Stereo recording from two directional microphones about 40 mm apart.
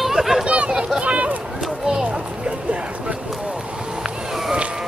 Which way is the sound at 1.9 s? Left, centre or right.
Centre.